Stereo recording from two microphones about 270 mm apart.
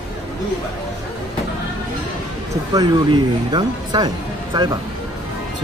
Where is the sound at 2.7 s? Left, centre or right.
Centre.